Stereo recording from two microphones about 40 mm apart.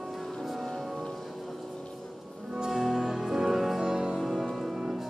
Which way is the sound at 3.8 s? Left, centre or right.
Centre.